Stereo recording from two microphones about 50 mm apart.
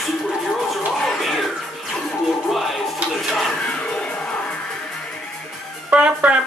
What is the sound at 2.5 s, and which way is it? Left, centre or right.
Speech, centre.